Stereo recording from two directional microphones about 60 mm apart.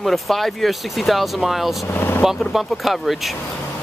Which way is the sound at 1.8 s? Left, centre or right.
Left.